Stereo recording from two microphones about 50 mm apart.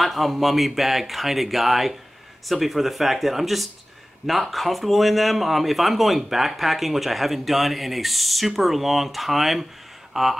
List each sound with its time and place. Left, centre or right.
0.0 s speech: centre